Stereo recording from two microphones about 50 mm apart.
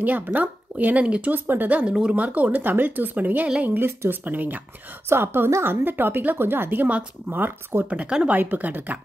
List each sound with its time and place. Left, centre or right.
0.0 s speech: right
1.0 s speech: right
1.3 s speech: right
1.8 s speech: centre
2.2 s speech: right
5.1 s a woman's voice: right